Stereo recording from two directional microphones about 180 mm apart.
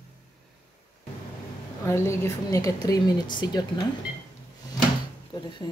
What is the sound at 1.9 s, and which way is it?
A woman's voice, 15° left (ahead or behind).